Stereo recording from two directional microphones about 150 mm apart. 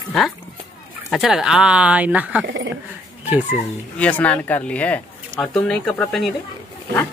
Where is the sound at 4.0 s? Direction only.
10° left (ahead or behind).